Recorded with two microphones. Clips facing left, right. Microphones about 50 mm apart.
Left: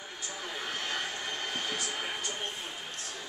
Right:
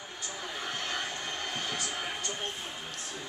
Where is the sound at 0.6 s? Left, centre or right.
Centre.